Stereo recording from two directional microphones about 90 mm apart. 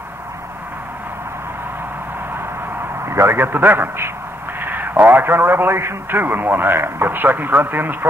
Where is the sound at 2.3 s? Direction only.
25° right (ahead or behind).